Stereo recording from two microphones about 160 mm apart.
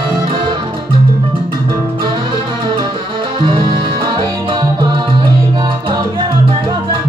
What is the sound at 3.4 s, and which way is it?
Music, 30° right (ahead or behind).